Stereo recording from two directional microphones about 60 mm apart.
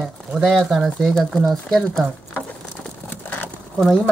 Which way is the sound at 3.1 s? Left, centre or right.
Left.